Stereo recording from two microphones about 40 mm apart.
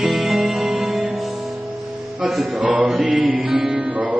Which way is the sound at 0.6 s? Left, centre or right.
Centre.